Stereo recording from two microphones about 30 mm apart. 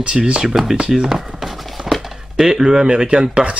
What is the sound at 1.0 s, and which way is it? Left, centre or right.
Speech, centre.